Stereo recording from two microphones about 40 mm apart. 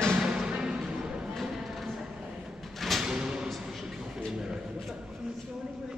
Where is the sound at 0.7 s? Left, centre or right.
Right.